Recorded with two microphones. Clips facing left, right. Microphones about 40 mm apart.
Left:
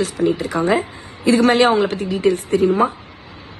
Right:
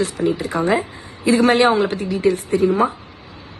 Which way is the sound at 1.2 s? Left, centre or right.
Right.